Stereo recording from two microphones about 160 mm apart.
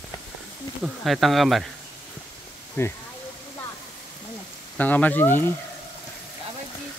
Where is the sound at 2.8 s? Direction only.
15° left (ahead or behind).